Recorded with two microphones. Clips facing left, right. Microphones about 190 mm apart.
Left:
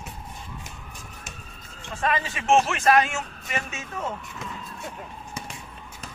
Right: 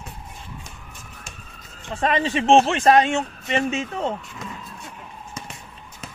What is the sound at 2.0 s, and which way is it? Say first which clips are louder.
Speech: right 6 dB; 30° right (ahead or behind).